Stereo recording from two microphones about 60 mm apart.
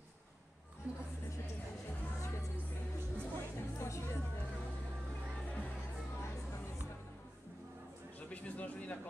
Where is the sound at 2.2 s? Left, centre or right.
Left.